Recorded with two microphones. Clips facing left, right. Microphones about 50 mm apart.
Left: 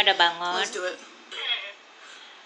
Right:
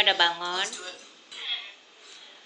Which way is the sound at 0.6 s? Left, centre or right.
Left.